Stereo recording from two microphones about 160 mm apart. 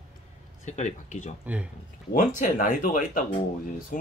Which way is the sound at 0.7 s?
45° left (ahead or behind).